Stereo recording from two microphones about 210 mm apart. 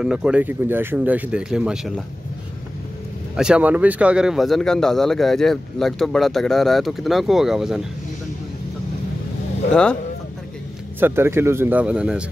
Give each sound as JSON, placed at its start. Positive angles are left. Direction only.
{"t": 0.0, "sound": "a man's voice", "side_deg": -5}
{"t": 3.3, "sound": "a man's voice", "side_deg": -5}
{"t": 11.0, "sound": "a man's voice", "side_deg": -10}